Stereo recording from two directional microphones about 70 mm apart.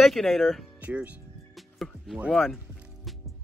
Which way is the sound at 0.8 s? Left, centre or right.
Right.